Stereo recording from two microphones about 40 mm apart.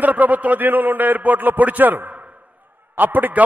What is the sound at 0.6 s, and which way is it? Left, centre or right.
A man's voice, right.